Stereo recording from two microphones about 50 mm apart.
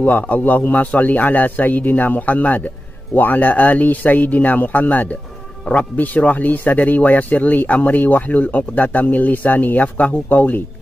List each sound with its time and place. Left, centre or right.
0.0 s speech: left